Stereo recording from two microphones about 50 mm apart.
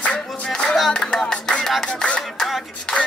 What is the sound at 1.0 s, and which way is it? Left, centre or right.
Music, centre.